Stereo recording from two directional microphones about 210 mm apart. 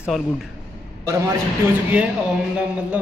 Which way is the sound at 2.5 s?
5° right (ahead or behind).